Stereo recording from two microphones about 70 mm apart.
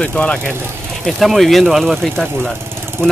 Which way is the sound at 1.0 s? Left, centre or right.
Centre.